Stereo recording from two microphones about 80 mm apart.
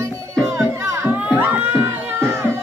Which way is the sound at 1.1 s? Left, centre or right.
Centre.